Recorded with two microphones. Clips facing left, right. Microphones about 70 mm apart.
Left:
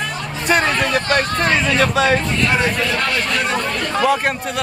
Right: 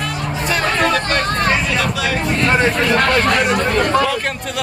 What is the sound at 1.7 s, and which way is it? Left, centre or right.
Speech, left.